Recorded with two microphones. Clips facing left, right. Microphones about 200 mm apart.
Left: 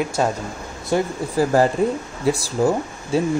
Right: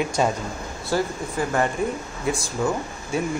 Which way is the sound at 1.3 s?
35° left (ahead or behind).